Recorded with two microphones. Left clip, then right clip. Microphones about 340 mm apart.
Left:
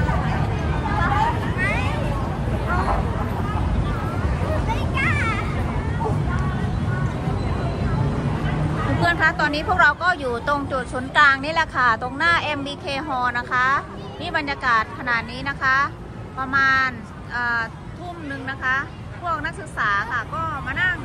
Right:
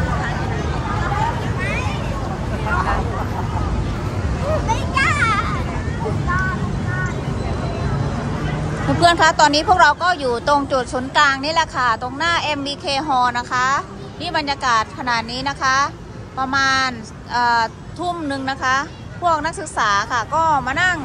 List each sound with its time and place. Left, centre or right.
4.6 s vehicle: right
9.0 s speech: centre